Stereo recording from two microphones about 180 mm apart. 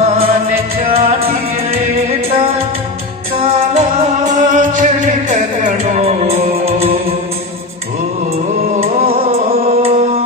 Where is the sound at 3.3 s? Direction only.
35° right (ahead or behind).